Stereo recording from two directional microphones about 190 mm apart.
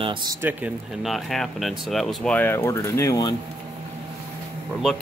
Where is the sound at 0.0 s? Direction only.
25° right (ahead or behind).